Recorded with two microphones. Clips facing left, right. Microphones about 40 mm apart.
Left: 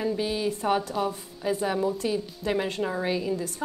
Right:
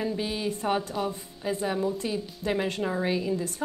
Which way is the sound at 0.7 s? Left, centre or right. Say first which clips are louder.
Left 2 dB; centre.